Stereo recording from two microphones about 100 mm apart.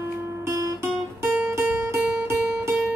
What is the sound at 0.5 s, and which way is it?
Music, 30° right (ahead or behind).